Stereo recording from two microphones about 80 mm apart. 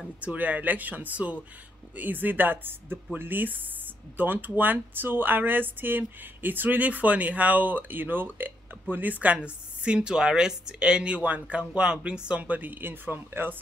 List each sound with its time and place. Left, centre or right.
0.2 s speech: centre